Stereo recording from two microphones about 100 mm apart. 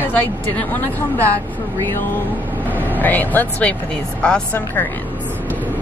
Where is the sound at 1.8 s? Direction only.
25° left (ahead or behind).